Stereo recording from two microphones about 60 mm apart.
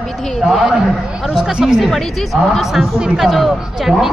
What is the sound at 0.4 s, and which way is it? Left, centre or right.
Speech, centre.